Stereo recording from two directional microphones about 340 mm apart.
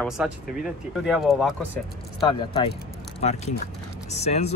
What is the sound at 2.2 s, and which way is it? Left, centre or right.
Speech, centre.